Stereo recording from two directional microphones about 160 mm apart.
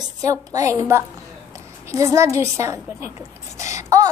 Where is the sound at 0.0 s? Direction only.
20° right (ahead or behind).